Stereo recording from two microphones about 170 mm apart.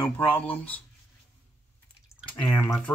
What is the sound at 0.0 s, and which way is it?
Speech, 10° left (ahead or behind).